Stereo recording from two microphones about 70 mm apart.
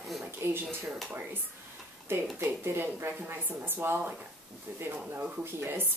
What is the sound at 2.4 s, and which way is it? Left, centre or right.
A woman's voice, right.